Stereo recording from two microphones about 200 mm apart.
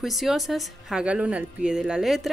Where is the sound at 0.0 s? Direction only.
Centre (ahead or behind).